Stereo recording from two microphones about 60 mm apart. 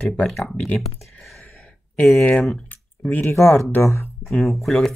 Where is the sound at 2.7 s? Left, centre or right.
Left.